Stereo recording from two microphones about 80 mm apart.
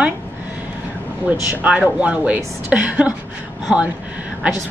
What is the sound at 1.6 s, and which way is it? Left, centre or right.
Speech, centre.